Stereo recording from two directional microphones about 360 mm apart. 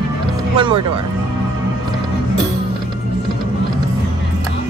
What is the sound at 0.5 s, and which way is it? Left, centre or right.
Music, centre.